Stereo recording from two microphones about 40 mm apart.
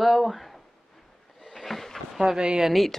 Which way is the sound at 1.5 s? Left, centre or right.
Centre.